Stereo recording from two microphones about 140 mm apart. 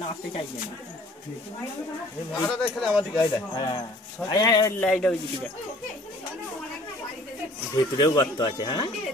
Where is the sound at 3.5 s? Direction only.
35° left (ahead or behind).